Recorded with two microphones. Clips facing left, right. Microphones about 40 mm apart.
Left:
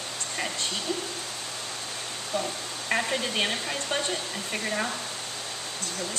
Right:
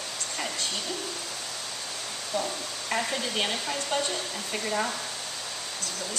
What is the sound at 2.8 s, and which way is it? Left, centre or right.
Speech, left.